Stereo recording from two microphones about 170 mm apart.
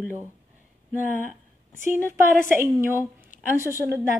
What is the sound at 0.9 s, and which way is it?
Speech, 50° left (ahead or behind).